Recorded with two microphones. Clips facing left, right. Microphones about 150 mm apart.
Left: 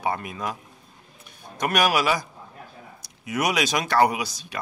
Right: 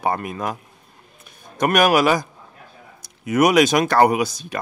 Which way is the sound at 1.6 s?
50° right (ahead or behind).